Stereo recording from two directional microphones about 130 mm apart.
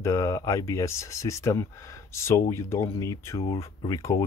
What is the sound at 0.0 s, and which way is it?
Speech, 25° left (ahead or behind).